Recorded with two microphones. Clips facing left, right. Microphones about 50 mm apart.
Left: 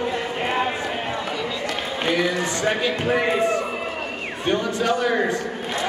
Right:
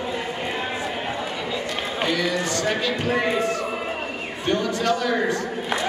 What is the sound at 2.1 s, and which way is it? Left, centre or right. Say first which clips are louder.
Run: left 3 dB; left.